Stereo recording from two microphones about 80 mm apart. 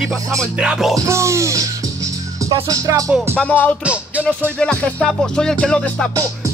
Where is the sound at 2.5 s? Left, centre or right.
Right.